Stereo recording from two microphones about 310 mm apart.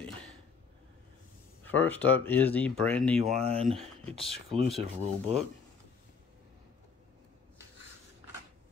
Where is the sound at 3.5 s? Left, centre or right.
Centre.